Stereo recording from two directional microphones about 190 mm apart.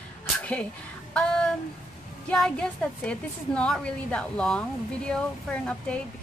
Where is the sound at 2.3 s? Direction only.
5° left (ahead or behind).